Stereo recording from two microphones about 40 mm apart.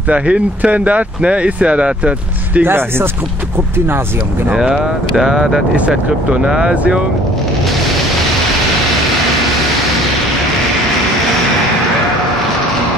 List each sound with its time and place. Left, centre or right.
0.1 s speech: right
2.6 s speech: right
4.6 s speech: right
5.9 s speech: right